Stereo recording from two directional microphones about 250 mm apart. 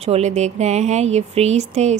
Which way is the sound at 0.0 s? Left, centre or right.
Right.